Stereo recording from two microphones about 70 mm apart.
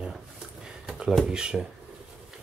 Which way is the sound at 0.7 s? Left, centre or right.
Centre.